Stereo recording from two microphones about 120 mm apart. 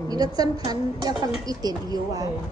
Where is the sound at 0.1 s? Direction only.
35° right (ahead or behind).